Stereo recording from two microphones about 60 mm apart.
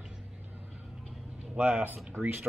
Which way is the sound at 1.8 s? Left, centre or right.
Right.